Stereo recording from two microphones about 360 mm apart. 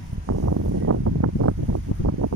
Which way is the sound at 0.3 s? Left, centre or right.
Right.